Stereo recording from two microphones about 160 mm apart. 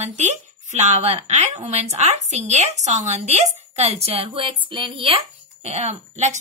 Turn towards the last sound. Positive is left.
turn(degrees=-45)  # may be behind; listen again after turning